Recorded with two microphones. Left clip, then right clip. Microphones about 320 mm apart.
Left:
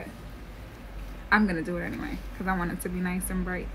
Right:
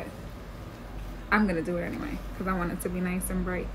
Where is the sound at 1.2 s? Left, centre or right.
Centre.